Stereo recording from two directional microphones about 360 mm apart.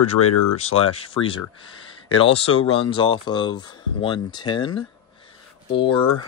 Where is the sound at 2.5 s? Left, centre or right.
Left.